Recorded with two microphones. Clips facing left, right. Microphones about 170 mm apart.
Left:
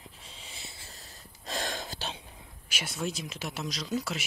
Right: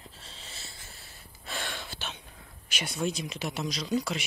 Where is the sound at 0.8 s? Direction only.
40° left (ahead or behind).